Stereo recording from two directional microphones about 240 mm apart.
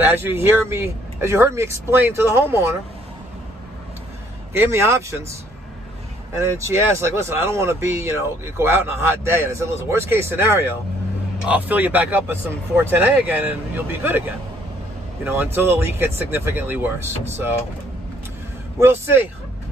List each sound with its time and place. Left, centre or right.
0.0 s speech: centre
4.6 s speech: centre
6.4 s speech: centre
15.2 s speech: centre